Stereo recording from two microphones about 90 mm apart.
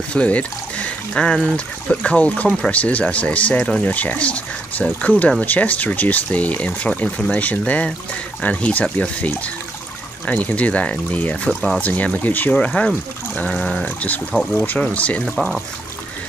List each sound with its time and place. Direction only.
0.1 s speech: 15° left (ahead or behind)
15.3 s speech: centre (ahead or behind)